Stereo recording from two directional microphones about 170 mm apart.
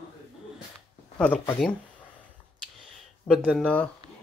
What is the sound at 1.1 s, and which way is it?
Speech, 10° left (ahead or behind).